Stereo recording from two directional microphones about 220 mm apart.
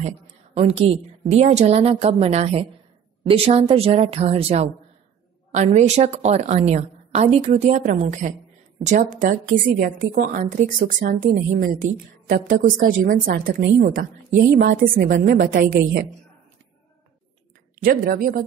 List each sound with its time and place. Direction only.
0.6 s a woman's voice: 25° right (ahead or behind)
17.8 s a woman's voice: 40° right (ahead or behind)